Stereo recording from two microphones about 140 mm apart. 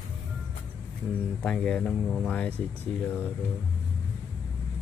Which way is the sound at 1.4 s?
5° left (ahead or behind).